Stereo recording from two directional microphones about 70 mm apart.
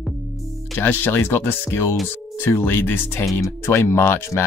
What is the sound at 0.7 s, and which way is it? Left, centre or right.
Speech, left.